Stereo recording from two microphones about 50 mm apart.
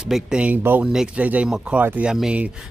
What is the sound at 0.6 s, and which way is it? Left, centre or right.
Speech, right.